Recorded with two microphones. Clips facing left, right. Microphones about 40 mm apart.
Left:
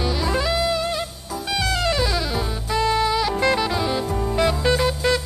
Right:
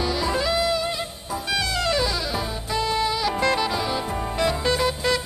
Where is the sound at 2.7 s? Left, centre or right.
Left.